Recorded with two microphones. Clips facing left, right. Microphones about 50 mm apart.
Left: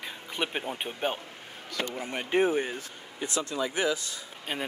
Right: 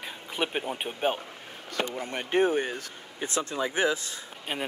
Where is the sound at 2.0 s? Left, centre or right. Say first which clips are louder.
Right 1 dB; right.